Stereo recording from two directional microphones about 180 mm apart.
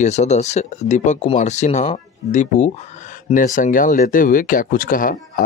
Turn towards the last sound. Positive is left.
turn(degrees=50)  # may be behind; listen again after turning